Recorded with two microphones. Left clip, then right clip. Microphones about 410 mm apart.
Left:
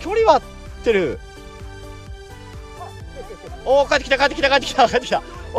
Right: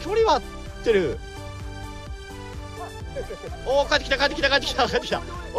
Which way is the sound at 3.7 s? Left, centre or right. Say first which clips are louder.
Left 5 dB; centre.